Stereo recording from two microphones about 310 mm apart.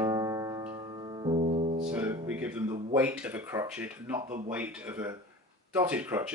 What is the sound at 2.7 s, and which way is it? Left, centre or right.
Speech, centre.